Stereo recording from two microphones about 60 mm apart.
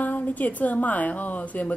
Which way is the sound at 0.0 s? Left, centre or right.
Left.